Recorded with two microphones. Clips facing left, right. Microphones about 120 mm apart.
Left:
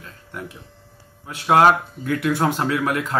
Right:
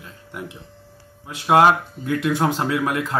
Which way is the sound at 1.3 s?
15° right (ahead or behind).